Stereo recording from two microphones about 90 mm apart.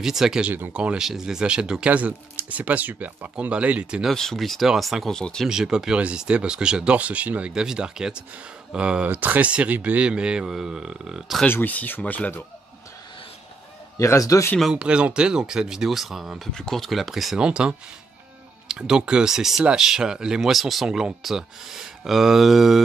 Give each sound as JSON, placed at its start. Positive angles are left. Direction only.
{"t": 0.0, "sound": "speech", "side_deg": -5}
{"t": 4.1, "sound": "speech", "side_deg": 5}
{"t": 5.5, "sound": "speech", "side_deg": -5}
{"t": 11.4, "sound": "speech", "side_deg": 20}
{"t": 13.9, "sound": "a man's voice", "side_deg": 35}
{"t": 14.6, "sound": "speech", "side_deg": -10}